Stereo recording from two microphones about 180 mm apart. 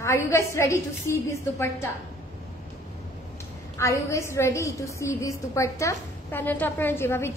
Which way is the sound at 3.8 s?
15° left (ahead or behind).